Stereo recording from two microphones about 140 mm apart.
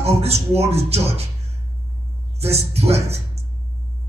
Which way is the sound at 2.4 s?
45° right (ahead or behind).